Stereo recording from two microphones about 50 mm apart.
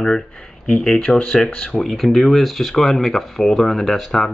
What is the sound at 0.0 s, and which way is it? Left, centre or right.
Speech, centre.